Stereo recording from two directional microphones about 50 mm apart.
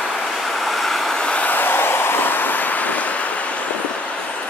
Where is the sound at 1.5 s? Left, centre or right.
Left.